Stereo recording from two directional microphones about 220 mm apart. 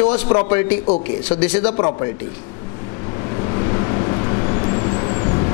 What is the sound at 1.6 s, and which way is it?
Speech, 25° left (ahead or behind).